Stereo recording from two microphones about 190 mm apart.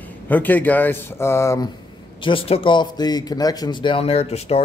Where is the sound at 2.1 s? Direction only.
25° left (ahead or behind).